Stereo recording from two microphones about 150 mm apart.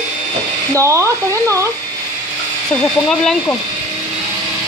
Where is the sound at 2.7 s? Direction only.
5° left (ahead or behind).